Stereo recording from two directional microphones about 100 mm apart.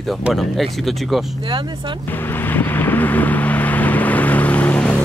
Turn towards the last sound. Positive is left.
turn(degrees=15)  # may be behind; listen again after turning